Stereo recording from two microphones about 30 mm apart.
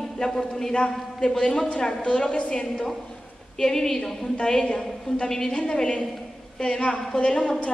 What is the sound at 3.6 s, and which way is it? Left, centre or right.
A man's voice, centre.